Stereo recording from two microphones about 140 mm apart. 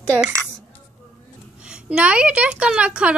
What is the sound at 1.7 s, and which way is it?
Speech, 5° right (ahead or behind).